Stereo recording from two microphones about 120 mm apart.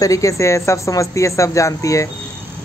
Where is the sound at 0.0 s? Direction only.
25° left (ahead or behind).